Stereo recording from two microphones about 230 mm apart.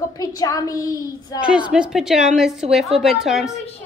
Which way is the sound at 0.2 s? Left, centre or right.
Centre.